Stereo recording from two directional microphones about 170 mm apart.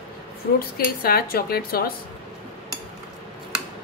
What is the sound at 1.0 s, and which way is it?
Speech, 60° left (ahead or behind).